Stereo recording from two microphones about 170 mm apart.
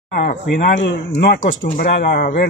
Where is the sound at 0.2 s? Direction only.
45° left (ahead or behind).